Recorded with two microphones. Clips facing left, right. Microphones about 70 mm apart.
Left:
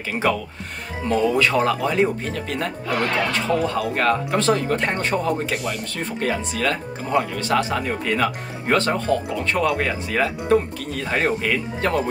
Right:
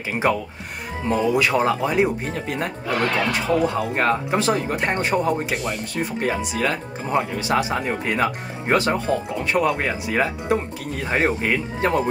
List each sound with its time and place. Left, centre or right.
0.1 s speech: right